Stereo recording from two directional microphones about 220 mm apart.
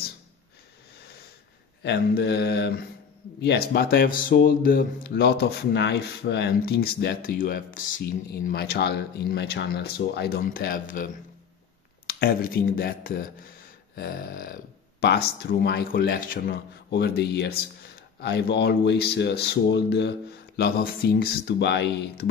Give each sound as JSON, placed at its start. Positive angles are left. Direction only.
{"t": 1.8, "sound": "speech", "side_deg": 50}
{"t": 12.1, "sound": "speech", "side_deg": 45}